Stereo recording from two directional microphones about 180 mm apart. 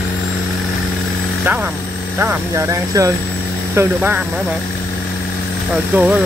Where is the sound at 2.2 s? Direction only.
15° right (ahead or behind).